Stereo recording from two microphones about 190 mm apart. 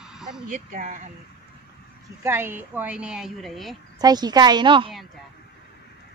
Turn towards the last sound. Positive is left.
turn(degrees=-25)  # may be behind; listen again after turning